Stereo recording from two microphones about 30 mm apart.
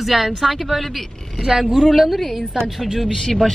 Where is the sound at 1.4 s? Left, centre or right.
Centre.